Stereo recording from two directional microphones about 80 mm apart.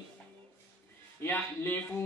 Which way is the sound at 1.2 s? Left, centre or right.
Left.